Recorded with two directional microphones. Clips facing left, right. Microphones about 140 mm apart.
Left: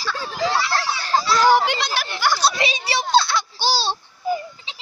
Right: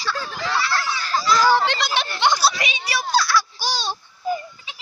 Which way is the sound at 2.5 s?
30° left (ahead or behind).